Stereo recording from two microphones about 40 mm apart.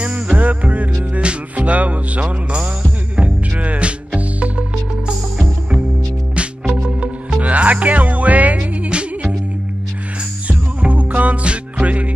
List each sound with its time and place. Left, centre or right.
0.0 s music: right
6.8 s music: right
8.8 s music: right
10.5 s music: right